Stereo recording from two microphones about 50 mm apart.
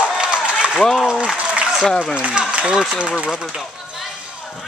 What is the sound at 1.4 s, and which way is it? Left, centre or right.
Applause, right.